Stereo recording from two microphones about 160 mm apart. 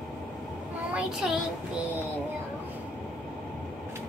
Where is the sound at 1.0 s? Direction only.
5° right (ahead or behind).